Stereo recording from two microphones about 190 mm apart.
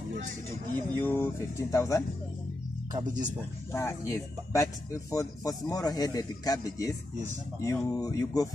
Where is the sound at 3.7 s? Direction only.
15° left (ahead or behind).